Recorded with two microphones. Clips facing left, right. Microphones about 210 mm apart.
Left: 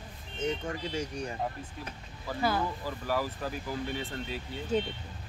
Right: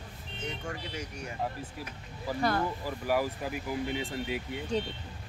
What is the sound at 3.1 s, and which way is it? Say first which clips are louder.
Speech: right 3 dB; 15° right (ahead or behind).